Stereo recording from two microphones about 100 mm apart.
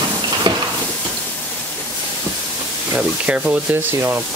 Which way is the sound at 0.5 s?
45° right (ahead or behind).